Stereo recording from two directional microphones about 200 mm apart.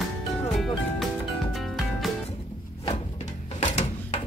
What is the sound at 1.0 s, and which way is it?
Music, centre (ahead or behind).